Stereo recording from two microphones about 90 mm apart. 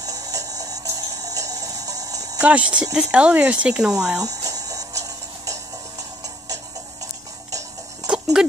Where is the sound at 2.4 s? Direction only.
15° right (ahead or behind).